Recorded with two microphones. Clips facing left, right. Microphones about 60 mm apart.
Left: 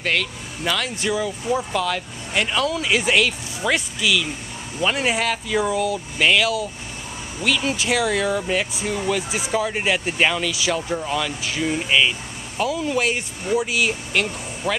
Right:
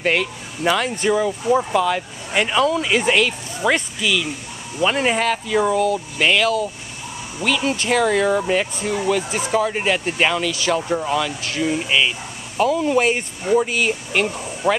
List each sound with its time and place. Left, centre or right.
0.0 s speech: centre
0.8 s speech: centre
1.2 s speech: centre
2.8 s speech: centre
7.7 s speech: centre
9.5 s speech: centre